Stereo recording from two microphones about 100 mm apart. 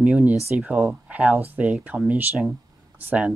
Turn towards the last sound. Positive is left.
turn(degrees=-15)  # may be behind; listen again after turning